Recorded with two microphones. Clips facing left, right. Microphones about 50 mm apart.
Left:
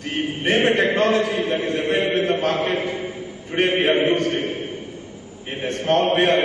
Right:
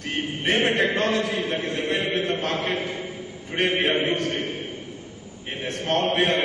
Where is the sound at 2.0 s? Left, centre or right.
Centre.